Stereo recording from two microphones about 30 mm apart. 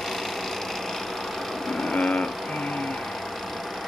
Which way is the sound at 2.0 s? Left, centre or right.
Centre.